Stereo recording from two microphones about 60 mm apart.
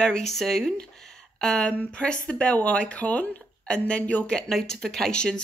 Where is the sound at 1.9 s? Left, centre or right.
Centre.